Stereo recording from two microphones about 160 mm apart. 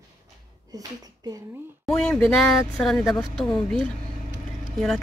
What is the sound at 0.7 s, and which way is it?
Speech, 20° right (ahead or behind).